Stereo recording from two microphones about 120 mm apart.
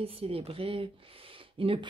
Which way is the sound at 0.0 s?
50° right (ahead or behind).